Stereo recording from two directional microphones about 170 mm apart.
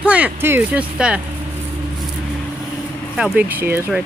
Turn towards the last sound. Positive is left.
turn(degrees=-10)  # may be behind; listen again after turning